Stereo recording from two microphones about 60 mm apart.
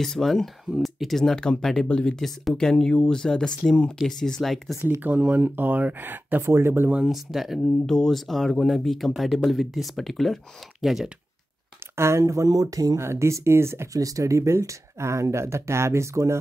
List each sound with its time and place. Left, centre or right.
0.0 s speech: centre
5.0 s speech: right
6.4 s speech: right
7.1 s speech: centre
7.6 s speech: centre
11.9 s speech: right
13.0 s speech: right
13.9 s speech: right